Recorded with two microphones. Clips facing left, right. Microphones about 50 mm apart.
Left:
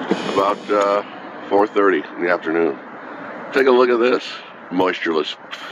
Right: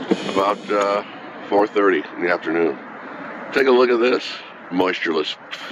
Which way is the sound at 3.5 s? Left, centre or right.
Centre.